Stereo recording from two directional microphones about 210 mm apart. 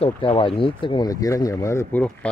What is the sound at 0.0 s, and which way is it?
Speech, 25° left (ahead or behind).